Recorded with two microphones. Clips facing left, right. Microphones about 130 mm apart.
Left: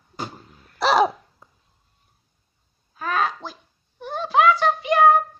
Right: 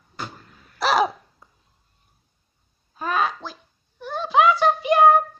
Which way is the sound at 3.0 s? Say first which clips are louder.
Even; 15° right (ahead or behind).